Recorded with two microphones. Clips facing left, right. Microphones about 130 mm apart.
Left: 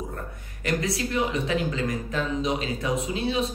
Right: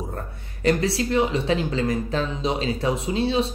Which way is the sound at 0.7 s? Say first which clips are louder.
Right 6 dB; 30° right (ahead or behind).